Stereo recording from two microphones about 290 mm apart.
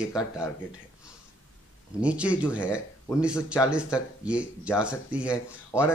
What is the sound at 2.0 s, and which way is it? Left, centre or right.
Speech, centre.